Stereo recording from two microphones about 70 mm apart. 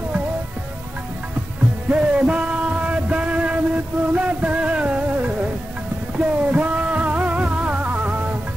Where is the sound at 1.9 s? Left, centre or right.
Centre.